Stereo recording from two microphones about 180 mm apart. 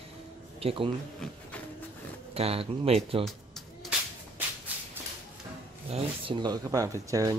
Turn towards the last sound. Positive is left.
turn(degrees=-20)  # may be behind; listen again after turning